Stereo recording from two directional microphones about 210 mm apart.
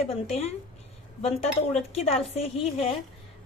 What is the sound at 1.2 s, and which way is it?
A woman's voice, 30° left (ahead or behind).